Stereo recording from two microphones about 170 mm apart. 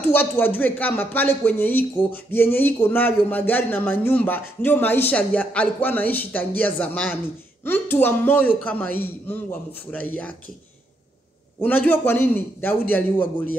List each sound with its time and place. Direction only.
0.0 s speech: 10° left (ahead or behind)
11.6 s speech: 10° left (ahead or behind)